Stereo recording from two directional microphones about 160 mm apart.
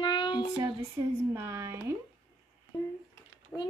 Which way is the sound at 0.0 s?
30° left (ahead or behind).